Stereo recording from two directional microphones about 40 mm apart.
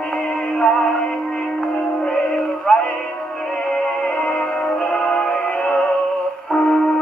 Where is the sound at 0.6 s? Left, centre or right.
Centre.